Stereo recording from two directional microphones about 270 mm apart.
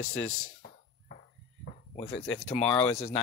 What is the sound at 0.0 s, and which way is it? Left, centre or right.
Speech, left.